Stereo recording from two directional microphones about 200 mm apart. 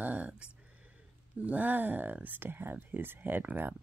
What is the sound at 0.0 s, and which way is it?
Speech, 5° right (ahead or behind).